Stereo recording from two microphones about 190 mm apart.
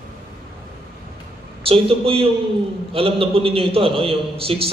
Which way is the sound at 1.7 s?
30° right (ahead or behind).